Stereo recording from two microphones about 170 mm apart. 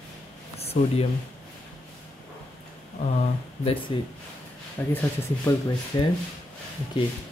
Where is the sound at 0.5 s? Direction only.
35° left (ahead or behind).